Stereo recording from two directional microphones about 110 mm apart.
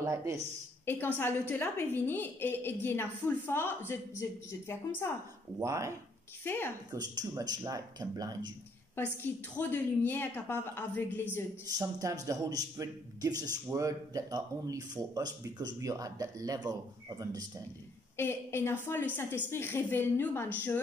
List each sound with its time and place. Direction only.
0.0 s speech: 25° right (ahead or behind)
0.8 s a woman's voice: 15° left (ahead or behind)
5.6 s speech: 25° right (ahead or behind)
6.5 s a woman's voice: 20° left (ahead or behind)
6.9 s a man's voice: 35° right (ahead or behind)
8.9 s a woman's voice: 15° left (ahead or behind)
11.6 s a man's voice: 30° right (ahead or behind)
18.1 s a woman's voice: 20° left (ahead or behind)